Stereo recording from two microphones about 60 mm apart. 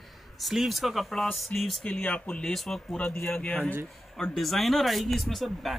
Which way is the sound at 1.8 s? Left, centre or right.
Left.